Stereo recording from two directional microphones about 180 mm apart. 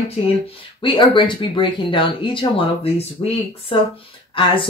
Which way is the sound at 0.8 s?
25° left (ahead or behind).